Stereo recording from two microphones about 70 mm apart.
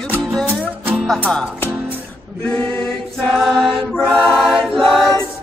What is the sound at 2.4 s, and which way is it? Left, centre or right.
Music, centre.